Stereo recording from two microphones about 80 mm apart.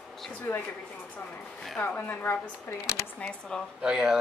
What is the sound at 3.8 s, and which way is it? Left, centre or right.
Speech, centre.